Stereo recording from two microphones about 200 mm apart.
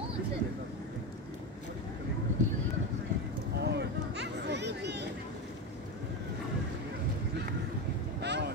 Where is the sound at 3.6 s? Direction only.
55° right (ahead or behind).